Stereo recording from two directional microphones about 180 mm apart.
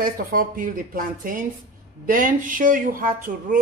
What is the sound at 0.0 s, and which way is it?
Speech, 50° right (ahead or behind).